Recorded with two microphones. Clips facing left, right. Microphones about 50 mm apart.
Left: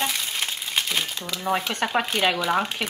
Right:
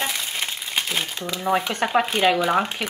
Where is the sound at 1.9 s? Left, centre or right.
Centre.